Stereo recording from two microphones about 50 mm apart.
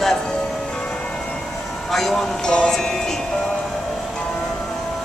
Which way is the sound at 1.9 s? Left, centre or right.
Centre.